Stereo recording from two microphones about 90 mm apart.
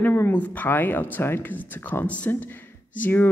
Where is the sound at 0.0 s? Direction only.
20° left (ahead or behind).